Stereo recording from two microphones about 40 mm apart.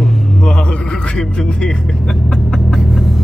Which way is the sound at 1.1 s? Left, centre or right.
Left.